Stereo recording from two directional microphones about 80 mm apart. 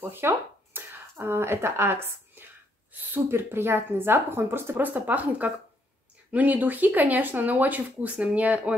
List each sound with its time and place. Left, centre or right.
0.2 s a woman's voice: right